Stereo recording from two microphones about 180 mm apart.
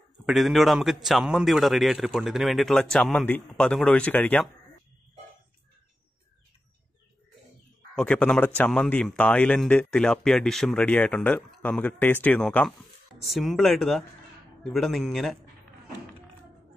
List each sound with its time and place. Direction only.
0.3 s a man's voice: centre (ahead or behind)
7.9 s a man's voice: 5° left (ahead or behind)